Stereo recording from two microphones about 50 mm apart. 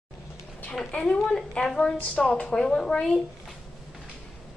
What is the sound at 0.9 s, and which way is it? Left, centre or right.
A woman's voice, left.